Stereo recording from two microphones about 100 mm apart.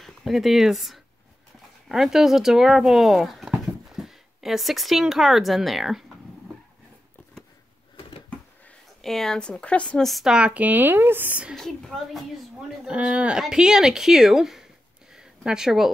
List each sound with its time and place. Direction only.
0.0 s speech: centre (ahead or behind)
9.0 s speech: 5° left (ahead or behind)
10.0 s speech: centre (ahead or behind)
11.5 s speech: centre (ahead or behind)
15.1 s a sound: 5° right (ahead or behind)